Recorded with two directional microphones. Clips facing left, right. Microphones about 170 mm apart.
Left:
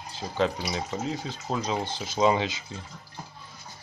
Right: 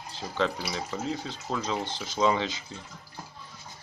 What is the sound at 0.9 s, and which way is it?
Speech, 10° left (ahead or behind).